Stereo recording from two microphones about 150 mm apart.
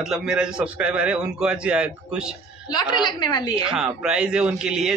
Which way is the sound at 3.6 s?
5° right (ahead or behind).